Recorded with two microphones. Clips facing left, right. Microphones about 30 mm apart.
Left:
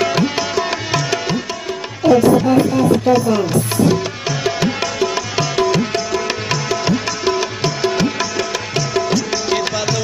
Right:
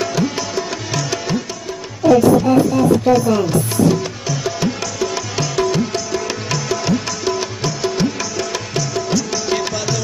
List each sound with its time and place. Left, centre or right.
0.0 s music: left
0.9 s music: left
3.9 s music: left
5.1 s music: left
7.8 s music: left